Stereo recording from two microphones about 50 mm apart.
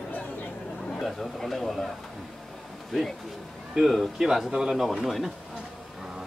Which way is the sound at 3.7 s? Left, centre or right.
Centre.